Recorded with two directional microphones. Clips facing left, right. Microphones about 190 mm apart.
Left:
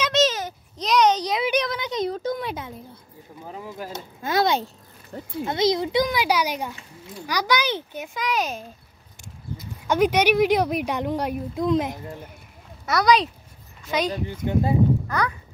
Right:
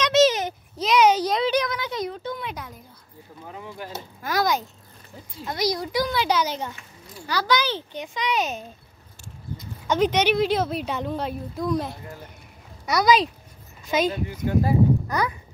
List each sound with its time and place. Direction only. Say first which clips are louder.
0.1 s a sound: right 4 dB; 10° right (ahead or behind)
1.4 s a sound: right 1 dB; 15° left (ahead or behind)
2.0 s speech: left 5 dB; 40° left (ahead or behind)
2.5 s speech: left 4 dB; 25° left (ahead or behind)
4.2 s speech: left 2 dB; 25° left (ahead or behind)
5.1 s speech: left 9 dB; 65° left (ahead or behind)
5.5 s speech: left 4 dB; 25° left (ahead or behind)
12.8 s speech: even; centre (ahead or behind)
14.2 s speech: even; 25° left (ahead or behind)
15.0 s speech: even; 15° right (ahead or behind)